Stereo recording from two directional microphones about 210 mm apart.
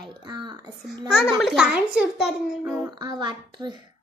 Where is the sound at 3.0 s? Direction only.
20° right (ahead or behind).